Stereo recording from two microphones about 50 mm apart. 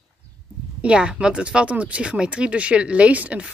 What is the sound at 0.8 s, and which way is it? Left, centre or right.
Speech, centre.